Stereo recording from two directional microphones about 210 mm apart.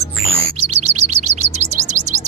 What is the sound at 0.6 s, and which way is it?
Chirp, 30° right (ahead or behind).